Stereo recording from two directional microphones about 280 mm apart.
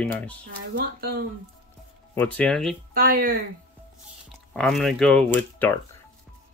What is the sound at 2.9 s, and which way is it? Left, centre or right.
Speech, right.